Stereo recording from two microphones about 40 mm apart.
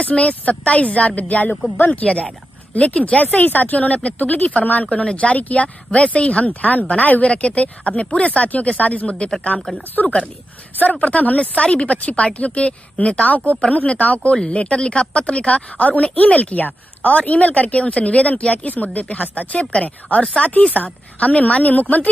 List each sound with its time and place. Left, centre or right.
0.0 s speech: left
10.8 s speech: left
14.3 s speech: left